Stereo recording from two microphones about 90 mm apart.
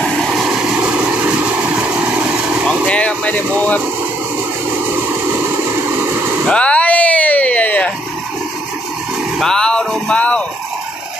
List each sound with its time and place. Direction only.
0.0 s vehicle: centre (ahead or behind)
2.9 s speech: 15° left (ahead or behind)
6.4 s a sound: 10° left (ahead or behind)
9.4 s speech: 5° left (ahead or behind)